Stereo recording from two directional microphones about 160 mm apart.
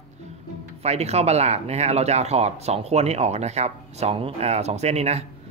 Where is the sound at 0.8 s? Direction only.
40° right (ahead or behind).